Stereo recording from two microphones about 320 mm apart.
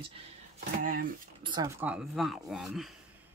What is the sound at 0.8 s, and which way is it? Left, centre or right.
Speech, right.